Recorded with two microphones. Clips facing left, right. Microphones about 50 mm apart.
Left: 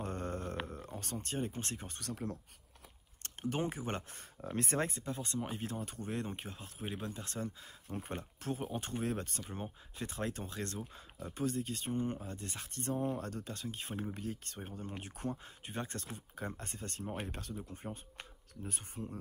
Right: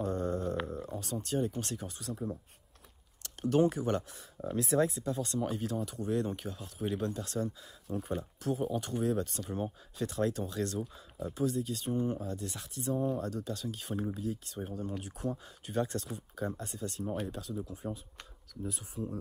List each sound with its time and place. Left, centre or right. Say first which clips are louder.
0.0 s a sound: right 7 dB; left
0.7 s speech: right 6 dB; left
2.0 s speech: right 2 dB; left
3.4 s speech: right 9 dB; left
4.6 s speech: right 6 dB; left; by 7.2 s centre
7.2 s speech: right 6 dB; left
9.4 s speech: right 7 dB; left
14.1 s speech: right 5 dB; left
14.6 s speech: right 6 dB; left
15.3 s speech: right 8 dB; left